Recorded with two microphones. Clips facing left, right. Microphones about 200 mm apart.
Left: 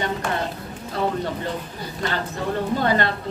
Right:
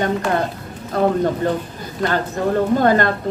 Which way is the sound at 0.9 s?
50° right (ahead or behind).